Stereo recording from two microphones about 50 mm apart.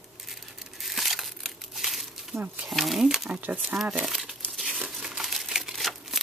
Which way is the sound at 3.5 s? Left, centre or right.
Right.